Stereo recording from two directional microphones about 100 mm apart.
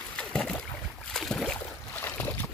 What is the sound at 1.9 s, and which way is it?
Boat, 20° left (ahead or behind).